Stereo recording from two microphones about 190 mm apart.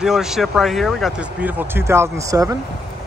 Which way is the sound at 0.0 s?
Centre (ahead or behind).